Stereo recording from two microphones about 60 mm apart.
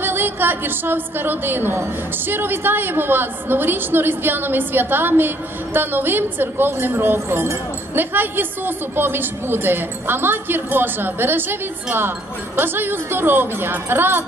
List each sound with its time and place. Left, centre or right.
0.0 s a woman's voice: right